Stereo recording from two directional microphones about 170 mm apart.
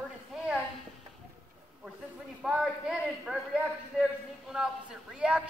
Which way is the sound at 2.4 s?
5° right (ahead or behind).